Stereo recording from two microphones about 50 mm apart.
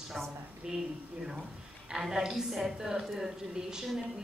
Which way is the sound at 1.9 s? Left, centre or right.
Centre.